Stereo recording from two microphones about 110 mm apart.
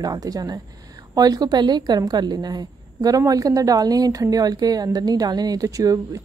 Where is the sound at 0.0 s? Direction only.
35° right (ahead or behind).